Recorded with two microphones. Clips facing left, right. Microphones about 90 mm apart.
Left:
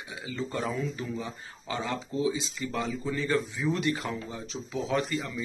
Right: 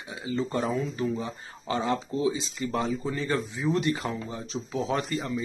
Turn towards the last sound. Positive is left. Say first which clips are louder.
# right 1 dB
turn(degrees=-40)  # may be behind; listen again after turning